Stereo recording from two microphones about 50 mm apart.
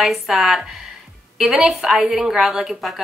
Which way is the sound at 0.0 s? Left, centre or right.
Centre.